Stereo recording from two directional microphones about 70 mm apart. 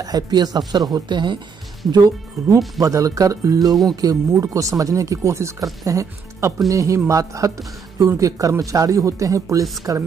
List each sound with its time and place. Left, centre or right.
0.0 s speech: right
2.4 s speech: right